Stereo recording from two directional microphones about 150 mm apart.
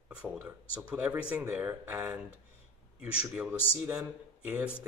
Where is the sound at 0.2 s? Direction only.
5° right (ahead or behind).